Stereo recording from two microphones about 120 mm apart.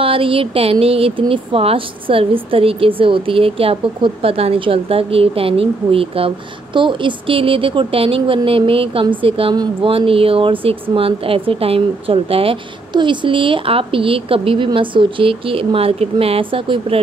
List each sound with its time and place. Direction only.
0.0 s speech: 50° right (ahead or behind)